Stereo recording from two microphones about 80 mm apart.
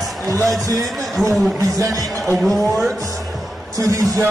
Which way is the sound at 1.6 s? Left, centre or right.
Right.